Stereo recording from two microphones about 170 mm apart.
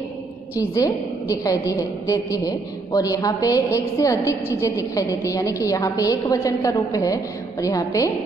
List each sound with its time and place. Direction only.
0.7 s a woman's voice: 20° left (ahead or behind)